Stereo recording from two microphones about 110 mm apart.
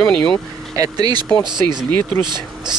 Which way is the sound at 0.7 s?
35° right (ahead or behind).